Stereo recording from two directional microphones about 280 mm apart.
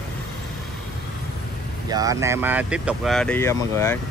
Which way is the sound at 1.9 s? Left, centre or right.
Centre.